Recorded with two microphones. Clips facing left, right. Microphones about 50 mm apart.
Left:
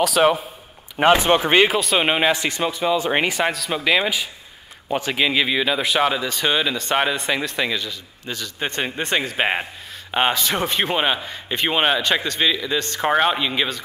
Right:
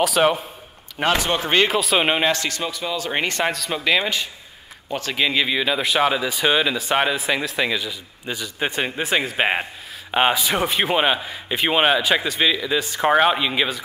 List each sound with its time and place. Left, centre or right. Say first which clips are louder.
0.0 s speech: left 1 dB; centre
0.9 s speech: left 5 dB; left
1.7 s speech: even; centre
2.4 s speech: left 4 dB; left
3.3 s speech: left 1 dB; centre
4.8 s a man's voice: left 4 dB; centre
5.1 s speech: even; centre